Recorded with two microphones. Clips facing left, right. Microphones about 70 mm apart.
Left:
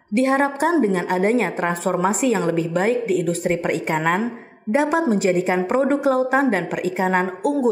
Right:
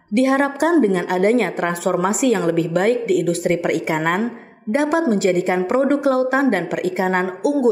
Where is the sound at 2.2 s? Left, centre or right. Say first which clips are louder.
Right 2 dB; right.